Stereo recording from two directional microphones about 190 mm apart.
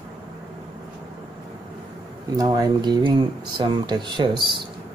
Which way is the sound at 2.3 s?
20° right (ahead or behind).